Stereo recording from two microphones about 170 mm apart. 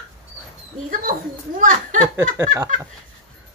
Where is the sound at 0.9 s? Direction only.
50° right (ahead or behind).